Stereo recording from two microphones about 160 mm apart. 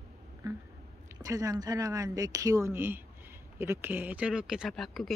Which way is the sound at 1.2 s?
20° right (ahead or behind).